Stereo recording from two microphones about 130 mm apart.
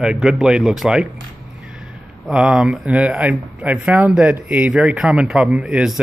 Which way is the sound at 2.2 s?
5° right (ahead or behind).